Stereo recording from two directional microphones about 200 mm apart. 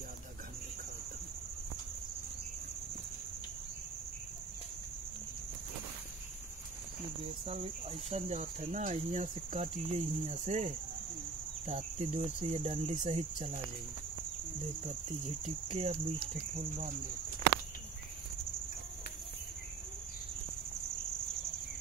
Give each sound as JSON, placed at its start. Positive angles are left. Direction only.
{"t": 7.4, "sound": "speech", "side_deg": -30}
{"t": 14.8, "sound": "speech", "side_deg": -35}